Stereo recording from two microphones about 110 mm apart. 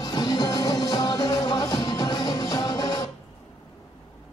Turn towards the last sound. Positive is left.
turn(degrees=35)  # may be behind; listen again after turning